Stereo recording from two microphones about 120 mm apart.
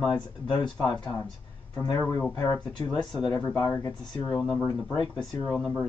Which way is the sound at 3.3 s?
30° left (ahead or behind).